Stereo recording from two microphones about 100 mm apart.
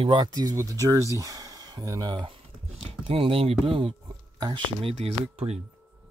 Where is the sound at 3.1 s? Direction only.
75° right (ahead or behind).